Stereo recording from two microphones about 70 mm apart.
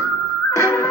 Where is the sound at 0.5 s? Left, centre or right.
Left.